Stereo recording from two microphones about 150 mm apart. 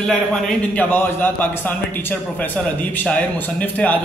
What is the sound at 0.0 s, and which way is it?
A man's voice, 5° left (ahead or behind).